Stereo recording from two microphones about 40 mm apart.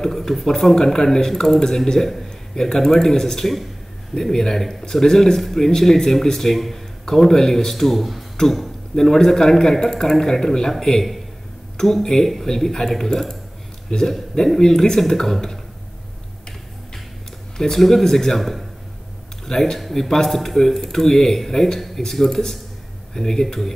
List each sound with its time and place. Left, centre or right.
0.0 s a sound: centre
0.6 s a man's voice: centre
17.6 s speech: centre